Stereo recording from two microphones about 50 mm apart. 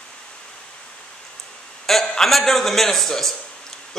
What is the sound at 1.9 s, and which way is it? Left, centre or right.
A man's voice, centre.